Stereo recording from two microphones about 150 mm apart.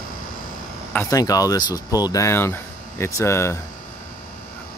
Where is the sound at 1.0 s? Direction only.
25° left (ahead or behind).